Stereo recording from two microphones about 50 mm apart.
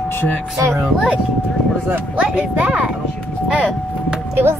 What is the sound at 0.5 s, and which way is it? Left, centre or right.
Speech, right.